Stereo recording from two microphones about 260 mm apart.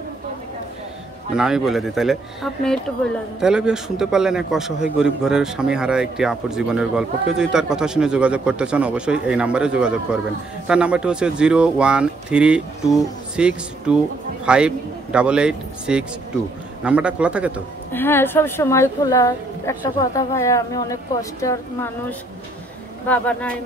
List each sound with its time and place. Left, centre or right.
1.3 s a man's voice: centre
17.9 s a woman's voice: centre
23.0 s a man's voice: centre